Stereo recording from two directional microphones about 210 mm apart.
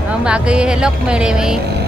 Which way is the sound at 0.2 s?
5° right (ahead or behind).